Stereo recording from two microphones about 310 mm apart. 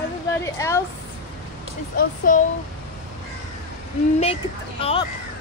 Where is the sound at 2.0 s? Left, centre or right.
Left.